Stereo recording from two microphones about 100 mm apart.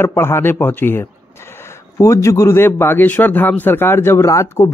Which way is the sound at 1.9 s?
30° left (ahead or behind).